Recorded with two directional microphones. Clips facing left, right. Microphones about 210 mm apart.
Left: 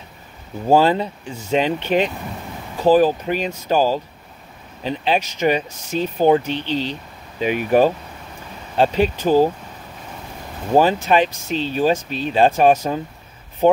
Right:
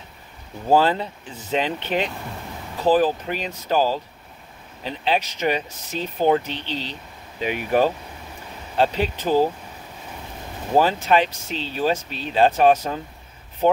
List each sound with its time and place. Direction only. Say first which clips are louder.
0.7 s speech: left 3 dB; 15° left (ahead or behind)
10.8 s speech: left 2 dB; 15° left (ahead or behind)